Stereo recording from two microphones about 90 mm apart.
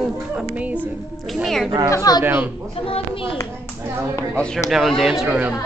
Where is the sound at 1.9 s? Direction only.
40° left (ahead or behind).